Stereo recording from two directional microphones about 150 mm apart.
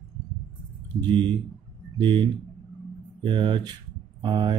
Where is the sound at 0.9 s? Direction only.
30° right (ahead or behind).